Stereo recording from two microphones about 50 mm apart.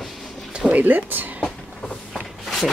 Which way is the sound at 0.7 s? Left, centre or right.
Right.